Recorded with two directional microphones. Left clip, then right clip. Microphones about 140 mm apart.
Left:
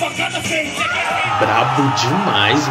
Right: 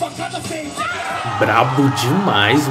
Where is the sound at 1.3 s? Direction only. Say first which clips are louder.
Right 2 dB; 20° right (ahead or behind).